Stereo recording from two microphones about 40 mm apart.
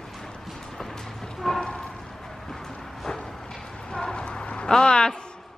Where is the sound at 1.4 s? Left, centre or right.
Centre.